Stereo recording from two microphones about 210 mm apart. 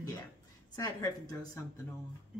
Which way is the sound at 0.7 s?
15° left (ahead or behind).